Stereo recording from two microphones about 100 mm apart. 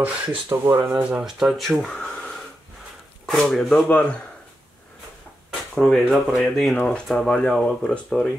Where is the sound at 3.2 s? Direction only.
5° left (ahead or behind).